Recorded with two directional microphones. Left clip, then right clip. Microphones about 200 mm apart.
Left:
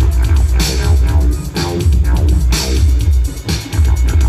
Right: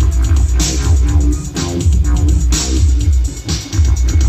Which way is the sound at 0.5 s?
10° left (ahead or behind).